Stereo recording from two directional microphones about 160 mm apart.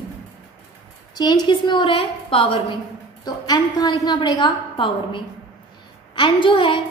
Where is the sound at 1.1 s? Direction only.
25° left (ahead or behind).